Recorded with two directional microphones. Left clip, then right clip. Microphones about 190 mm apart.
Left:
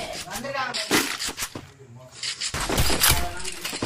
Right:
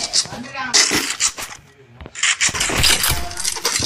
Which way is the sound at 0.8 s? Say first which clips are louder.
Right 4 dB; centre (ahead or behind).